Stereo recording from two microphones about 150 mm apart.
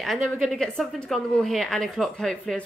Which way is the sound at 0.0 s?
Centre (ahead or behind).